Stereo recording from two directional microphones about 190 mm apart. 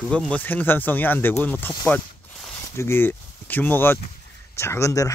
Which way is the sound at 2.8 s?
10° left (ahead or behind).